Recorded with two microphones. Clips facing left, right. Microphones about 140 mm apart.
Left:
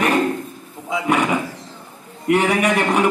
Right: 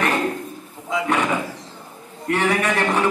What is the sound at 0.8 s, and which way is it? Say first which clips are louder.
Drawer open or close: left 2 dB; 10° left (ahead or behind).